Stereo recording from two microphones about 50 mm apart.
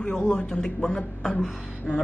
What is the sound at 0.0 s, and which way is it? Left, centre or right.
Speech, centre.